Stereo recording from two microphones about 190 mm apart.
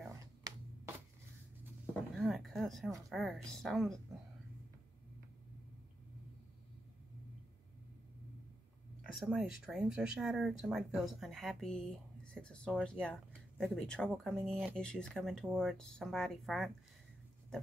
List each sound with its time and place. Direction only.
0.5 s a sound: 20° right (ahead or behind)
2.1 s speech: centre (ahead or behind)
9.0 s speech: 5° right (ahead or behind)